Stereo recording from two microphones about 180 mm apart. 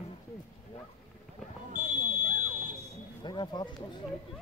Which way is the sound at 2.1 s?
10° right (ahead or behind).